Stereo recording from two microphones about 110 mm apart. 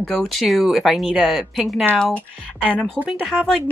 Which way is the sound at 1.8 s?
10° left (ahead or behind).